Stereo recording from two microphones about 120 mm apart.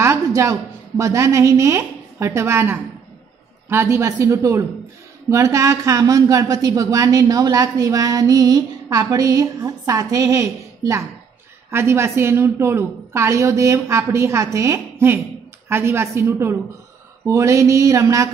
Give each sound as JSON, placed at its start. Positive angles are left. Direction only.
{"t": 0.0, "sound": "a woman's voice", "side_deg": -25}
{"t": 11.7, "sound": "speech", "side_deg": -20}